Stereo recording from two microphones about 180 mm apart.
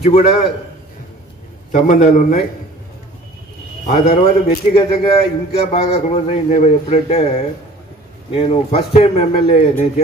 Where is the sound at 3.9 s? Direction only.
35° left (ahead or behind).